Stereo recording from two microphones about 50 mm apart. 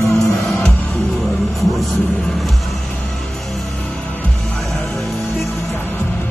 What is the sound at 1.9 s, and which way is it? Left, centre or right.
Music, left.